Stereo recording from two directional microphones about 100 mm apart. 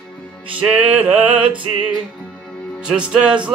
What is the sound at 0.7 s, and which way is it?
Music, 15° right (ahead or behind).